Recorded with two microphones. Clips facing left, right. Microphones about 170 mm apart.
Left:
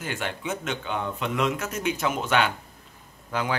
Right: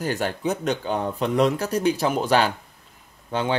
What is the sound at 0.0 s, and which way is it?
A man's voice, 40° right (ahead or behind).